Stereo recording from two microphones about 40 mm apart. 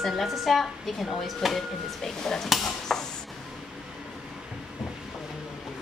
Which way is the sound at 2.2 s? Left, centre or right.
Centre.